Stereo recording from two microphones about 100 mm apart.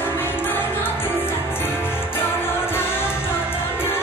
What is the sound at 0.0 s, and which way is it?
Music, 20° left (ahead or behind).